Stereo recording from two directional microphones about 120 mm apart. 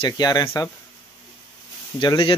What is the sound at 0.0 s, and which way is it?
Speech, 35° left (ahead or behind).